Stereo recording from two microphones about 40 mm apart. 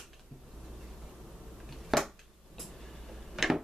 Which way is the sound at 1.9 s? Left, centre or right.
Centre.